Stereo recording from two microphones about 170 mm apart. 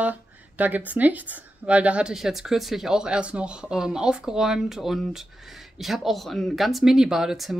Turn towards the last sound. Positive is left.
turn(degrees=0)  # may be behind; listen again after turning